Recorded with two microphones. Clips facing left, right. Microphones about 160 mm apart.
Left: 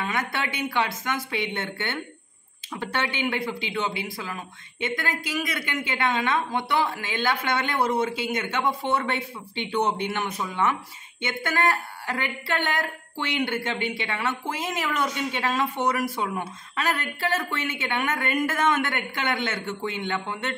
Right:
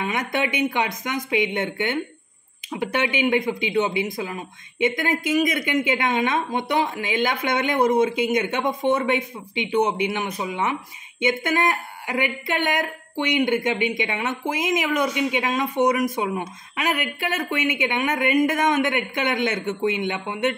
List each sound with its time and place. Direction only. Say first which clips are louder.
0.0 s a man's voice: right 4 dB; 20° right (ahead or behind)